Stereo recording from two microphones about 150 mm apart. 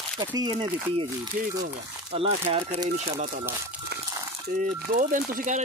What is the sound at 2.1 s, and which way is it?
Speech, 40° right (ahead or behind).